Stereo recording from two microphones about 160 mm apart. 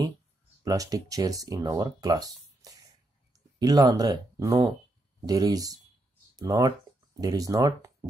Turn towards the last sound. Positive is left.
turn(degrees=-20)  # may be behind; listen again after turning